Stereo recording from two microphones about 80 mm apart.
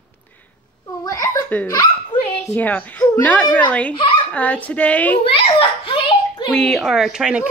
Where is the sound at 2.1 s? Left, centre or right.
Left.